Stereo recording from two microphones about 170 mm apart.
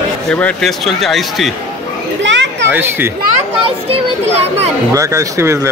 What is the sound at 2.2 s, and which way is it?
Children playing, 90° right.